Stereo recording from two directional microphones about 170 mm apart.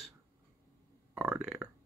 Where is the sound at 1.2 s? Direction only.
5° right (ahead or behind).